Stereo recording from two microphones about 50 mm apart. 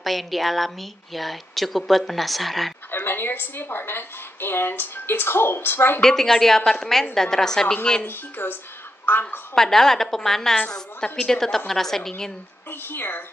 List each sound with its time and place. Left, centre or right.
0.0 s a woman's voice: centre
2.9 s a woman's voice: left
5.9 s a woman's voice: centre
8.0 s a woman's voice: left
9.6 s a woman's voice: centre
12.8 s a woman's voice: left